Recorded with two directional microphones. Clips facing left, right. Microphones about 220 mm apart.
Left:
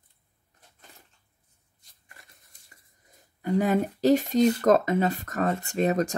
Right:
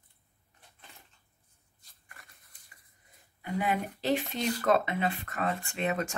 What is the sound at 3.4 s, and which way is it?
Speech, 40° left (ahead or behind).